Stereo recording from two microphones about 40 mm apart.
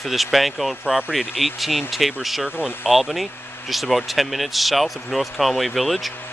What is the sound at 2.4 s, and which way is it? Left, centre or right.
Speech, right.